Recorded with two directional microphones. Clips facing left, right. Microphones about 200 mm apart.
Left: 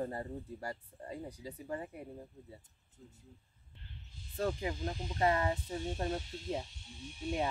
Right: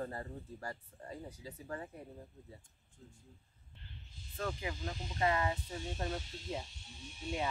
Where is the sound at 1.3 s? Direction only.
15° left (ahead or behind).